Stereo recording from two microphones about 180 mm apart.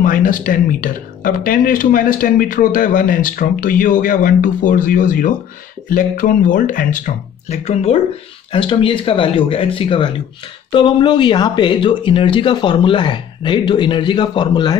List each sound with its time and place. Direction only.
0.0 s speech: 50° left (ahead or behind); by 14.8 s 25° left (ahead or behind)